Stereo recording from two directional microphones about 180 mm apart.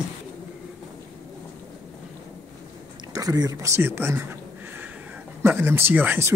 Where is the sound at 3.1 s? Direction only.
20° right (ahead or behind).